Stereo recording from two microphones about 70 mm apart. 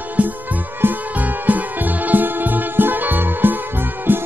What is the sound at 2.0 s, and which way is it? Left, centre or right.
Music, right.